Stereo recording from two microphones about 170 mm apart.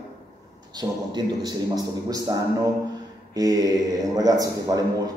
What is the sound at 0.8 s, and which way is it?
A man's voice, 25° right (ahead or behind).